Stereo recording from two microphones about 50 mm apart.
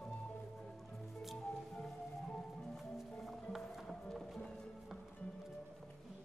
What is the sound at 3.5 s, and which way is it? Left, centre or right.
Music, centre.